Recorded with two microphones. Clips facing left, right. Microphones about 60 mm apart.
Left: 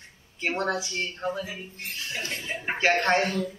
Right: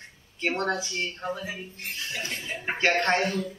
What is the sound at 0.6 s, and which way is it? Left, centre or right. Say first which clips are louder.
Speech: left 2 dB; centre.